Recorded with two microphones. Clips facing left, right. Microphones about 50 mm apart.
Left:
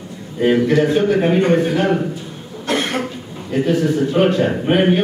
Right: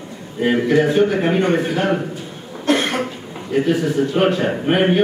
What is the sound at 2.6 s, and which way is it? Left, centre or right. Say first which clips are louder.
Cough: right 2 dB; right.